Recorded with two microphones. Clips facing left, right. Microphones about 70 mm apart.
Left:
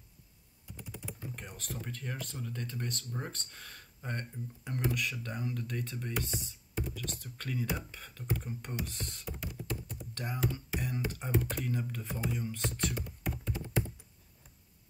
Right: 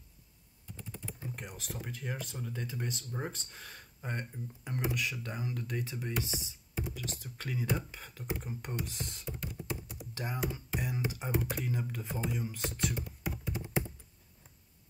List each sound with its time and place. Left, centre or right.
0.7 s typing: centre
1.3 s speech: centre
8.4 s computer keyboard: centre
10.1 s speech: centre
10.7 s a sound: centre
11.1 s speech: centre